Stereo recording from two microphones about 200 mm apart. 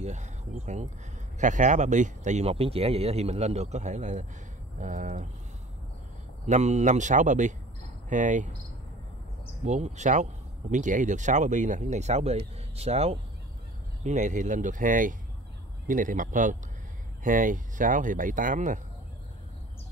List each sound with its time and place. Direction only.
0.0 s speech: 35° right (ahead or behind)
6.4 s speech: 35° right (ahead or behind)
9.7 s speech: 35° right (ahead or behind)